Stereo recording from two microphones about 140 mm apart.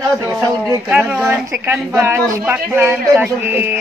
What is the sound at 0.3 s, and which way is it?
Speech, 20° right (ahead or behind).